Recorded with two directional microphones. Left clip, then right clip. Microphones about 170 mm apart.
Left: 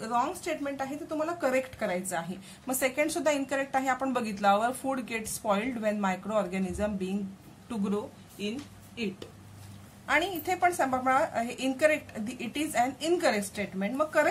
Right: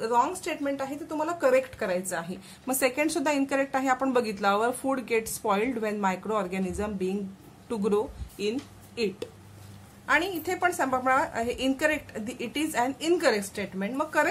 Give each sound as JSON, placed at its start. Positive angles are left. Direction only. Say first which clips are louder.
{"t": 0.0, "sound": "a woman's voice", "louder": "right 4 dB", "side_deg": -20}
{"t": 10.0, "sound": "a woman's voice", "louder": "right 2 dB", "side_deg": -20}